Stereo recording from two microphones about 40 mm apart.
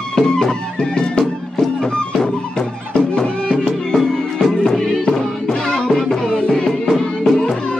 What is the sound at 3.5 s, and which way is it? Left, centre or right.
Music, centre.